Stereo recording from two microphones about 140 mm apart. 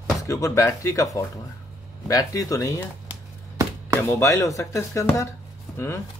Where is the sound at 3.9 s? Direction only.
20° left (ahead or behind).